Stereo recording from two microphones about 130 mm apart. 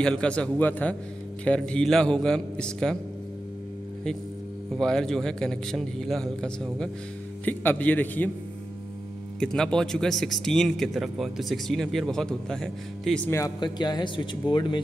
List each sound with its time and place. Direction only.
0.0 s a man's voice: 5° left (ahead or behind)
4.7 s a man's voice: 5° left (ahead or behind)
9.4 s speech: 5° left (ahead or behind)
13.6 s speech: 35° left (ahead or behind)